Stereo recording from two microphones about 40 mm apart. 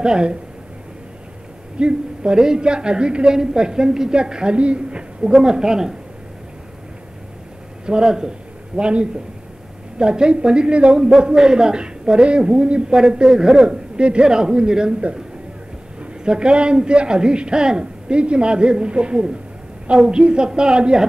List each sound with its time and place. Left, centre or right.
0.0 s a man's voice: right
1.8 s a man's voice: right
7.8 s a man's voice: centre
11.1 s a man's voice: centre
16.0 s a man's voice: right